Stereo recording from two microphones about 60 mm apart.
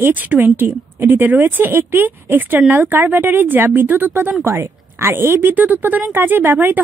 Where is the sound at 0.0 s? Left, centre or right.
Right.